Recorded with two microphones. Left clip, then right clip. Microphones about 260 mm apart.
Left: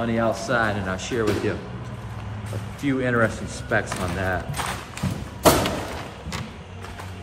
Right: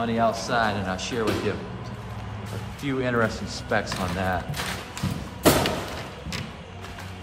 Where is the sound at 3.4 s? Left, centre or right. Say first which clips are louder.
Left 2 dB; right.